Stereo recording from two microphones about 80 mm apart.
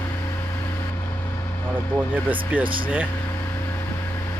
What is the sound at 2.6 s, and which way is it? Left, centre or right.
Speech, right.